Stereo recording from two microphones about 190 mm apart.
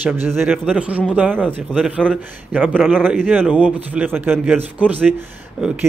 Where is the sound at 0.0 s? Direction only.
10° right (ahead or behind).